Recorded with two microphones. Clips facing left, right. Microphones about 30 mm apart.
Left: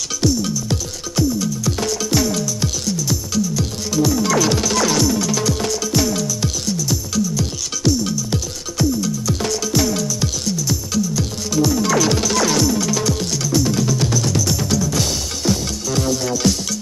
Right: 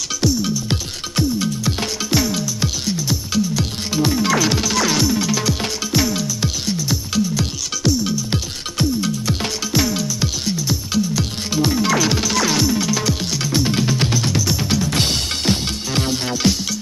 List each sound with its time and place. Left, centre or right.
0.2 s music: centre
0.7 s music: right
6.8 s music: right
13.5 s music: right
14.8 s music: right